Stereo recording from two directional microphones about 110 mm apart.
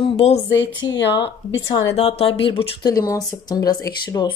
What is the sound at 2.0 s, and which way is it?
Speech, 65° left (ahead or behind).